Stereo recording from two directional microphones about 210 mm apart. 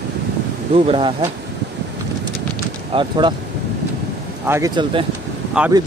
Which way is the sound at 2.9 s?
20° right (ahead or behind).